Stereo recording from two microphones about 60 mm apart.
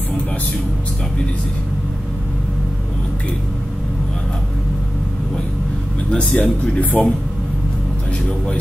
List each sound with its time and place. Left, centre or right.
6.3 s speech: centre
6.8 s speech: left